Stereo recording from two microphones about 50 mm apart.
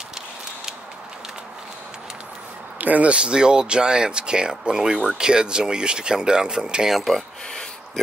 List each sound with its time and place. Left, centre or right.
2.8 s speech: right; by 6.9 s centre
6.9 s speech: centre